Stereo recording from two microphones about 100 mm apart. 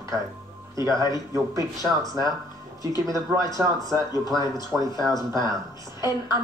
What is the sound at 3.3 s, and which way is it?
Speech, 30° right (ahead or behind).